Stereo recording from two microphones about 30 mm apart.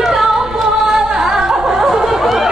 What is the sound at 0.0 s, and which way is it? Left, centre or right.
Music, centre.